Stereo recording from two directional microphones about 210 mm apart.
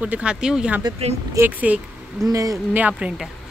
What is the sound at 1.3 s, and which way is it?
Speech, 10° right (ahead or behind).